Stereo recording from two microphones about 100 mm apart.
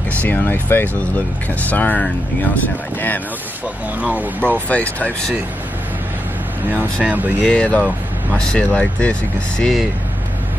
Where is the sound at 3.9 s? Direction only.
15° right (ahead or behind).